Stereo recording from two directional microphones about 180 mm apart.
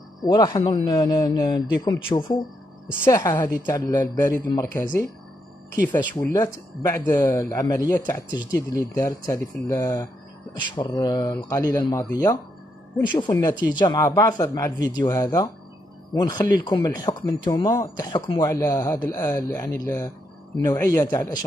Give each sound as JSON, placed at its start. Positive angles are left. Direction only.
{"t": 0.2, "sound": "a woman's voice", "side_deg": 20}
{"t": 6.1, "sound": "a woman's voice", "side_deg": 15}